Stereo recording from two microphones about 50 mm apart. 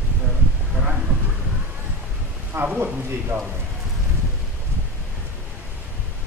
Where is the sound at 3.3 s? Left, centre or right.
Right.